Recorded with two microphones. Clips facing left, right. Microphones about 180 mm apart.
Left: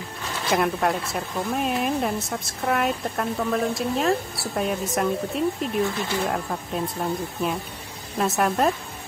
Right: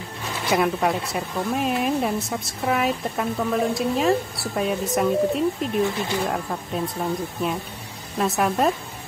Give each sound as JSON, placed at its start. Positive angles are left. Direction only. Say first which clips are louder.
{"t": 0.5, "sound": "speech", "louder": "right 1 dB", "side_deg": 0}